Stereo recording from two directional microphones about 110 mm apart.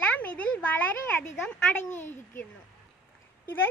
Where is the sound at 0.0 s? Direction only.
15° left (ahead or behind).